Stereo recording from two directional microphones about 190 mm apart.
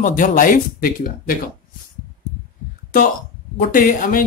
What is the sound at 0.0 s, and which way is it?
Speech, 45° left (ahead or behind).